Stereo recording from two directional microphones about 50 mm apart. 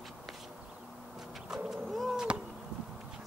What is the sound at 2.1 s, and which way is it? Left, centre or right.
Arrow, right.